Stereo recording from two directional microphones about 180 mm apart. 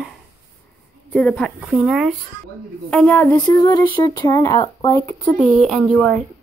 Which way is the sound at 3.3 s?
20° left (ahead or behind).